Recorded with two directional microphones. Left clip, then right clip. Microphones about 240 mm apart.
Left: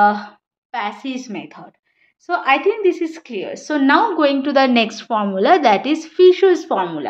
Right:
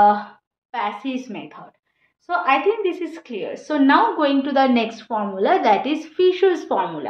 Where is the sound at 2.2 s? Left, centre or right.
Left.